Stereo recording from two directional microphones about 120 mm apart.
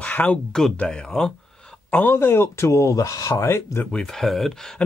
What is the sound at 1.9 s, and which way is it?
Speech, 15° left (ahead or behind).